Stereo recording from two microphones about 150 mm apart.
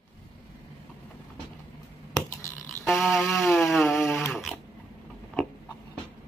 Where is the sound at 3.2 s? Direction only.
20° left (ahead or behind).